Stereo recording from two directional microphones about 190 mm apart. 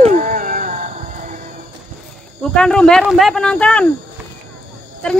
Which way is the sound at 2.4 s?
5° left (ahead or behind).